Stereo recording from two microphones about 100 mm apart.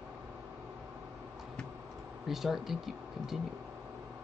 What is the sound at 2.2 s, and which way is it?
Speech, centre (ahead or behind).